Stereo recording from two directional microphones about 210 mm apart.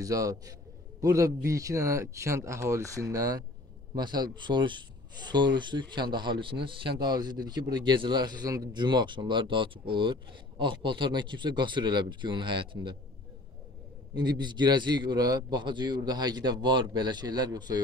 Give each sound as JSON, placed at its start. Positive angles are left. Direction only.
{"t": 0.0, "sound": "a man's voice", "side_deg": -15}
{"t": 14.1, "sound": "speech", "side_deg": -20}